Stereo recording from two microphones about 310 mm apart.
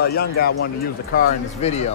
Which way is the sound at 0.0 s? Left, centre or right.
Left.